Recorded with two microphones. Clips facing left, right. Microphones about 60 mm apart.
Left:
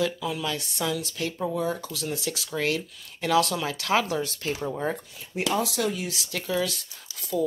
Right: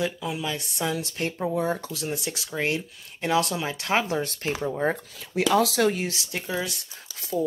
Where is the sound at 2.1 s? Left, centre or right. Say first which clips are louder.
Even; right.